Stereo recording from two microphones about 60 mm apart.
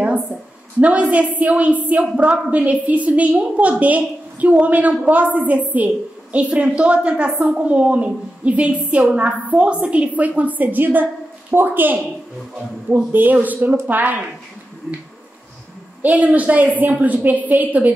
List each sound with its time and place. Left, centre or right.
0.7 s a woman's voice: right
16.0 s a woman's voice: right